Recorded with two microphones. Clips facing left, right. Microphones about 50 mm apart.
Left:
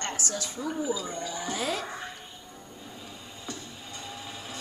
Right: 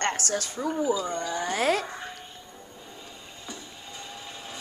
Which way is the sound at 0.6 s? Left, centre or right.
Right.